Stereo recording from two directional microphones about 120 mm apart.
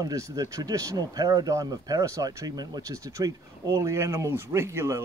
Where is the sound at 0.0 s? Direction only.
30° right (ahead or behind).